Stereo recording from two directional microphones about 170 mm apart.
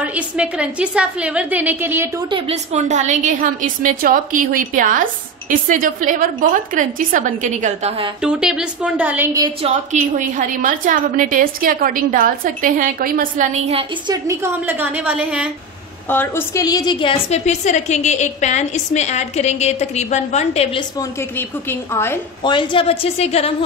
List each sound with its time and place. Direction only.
0.0 s a woman's voice: 10° right (ahead or behind)
2.3 s a woman's voice: 35° right (ahead or behind)
8.2 s a woman's voice: 5° right (ahead or behind)
9.6 s a woman's voice: 45° right (ahead or behind)
14.0 s a woman's voice: 20° right (ahead or behind)
16.1 s a woman's voice: 10° left (ahead or behind); by 20.8 s 35° left (ahead or behind)
21.4 s a woman's voice: 15° left (ahead or behind)
22.4 s a woman's voice: 30° left (ahead or behind)